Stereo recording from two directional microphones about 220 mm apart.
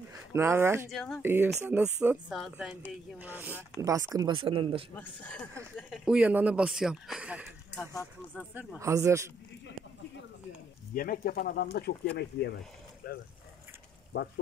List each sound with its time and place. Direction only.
0.3 s speech: 10° right (ahead or behind)
0.9 s speech: centre (ahead or behind)
1.2 s speech: 10° right (ahead or behind)
4.9 s speech: 10° left (ahead or behind); by 9.2 s 15° right (ahead or behind)
11.0 s speech: 40° left (ahead or behind)